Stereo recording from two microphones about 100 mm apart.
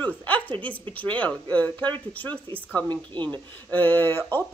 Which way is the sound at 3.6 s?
15° left (ahead or behind).